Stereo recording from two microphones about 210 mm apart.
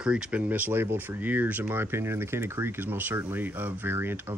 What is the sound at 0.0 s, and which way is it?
Speech, 5° right (ahead or behind).